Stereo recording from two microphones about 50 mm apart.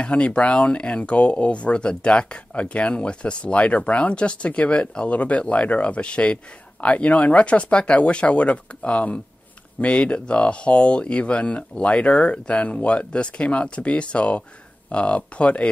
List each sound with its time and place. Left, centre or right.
0.0 s speech: left